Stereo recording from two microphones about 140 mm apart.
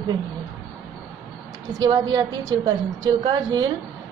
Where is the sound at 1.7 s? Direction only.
25° right (ahead or behind).